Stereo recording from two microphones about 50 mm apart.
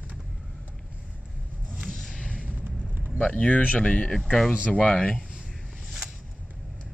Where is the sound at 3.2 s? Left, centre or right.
Left.